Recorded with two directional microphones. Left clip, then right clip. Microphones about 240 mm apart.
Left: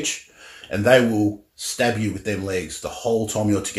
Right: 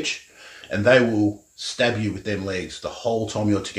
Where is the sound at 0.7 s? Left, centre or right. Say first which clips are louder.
Left 1 dB; centre.